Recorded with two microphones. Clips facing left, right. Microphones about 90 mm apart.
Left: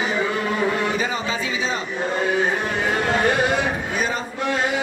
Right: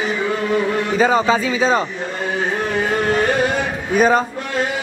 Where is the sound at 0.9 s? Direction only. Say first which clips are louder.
Right 9 dB; 35° right (ahead or behind).